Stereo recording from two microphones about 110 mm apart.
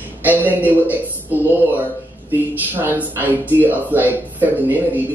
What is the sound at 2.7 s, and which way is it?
Speech, 15° right (ahead or behind).